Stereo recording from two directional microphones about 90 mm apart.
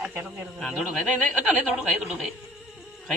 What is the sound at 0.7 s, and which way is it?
Speech, centre (ahead or behind).